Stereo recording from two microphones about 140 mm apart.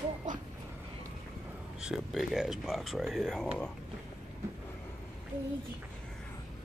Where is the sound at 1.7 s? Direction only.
5° right (ahead or behind).